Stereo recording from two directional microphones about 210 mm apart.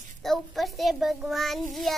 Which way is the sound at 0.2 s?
Centre (ahead or behind).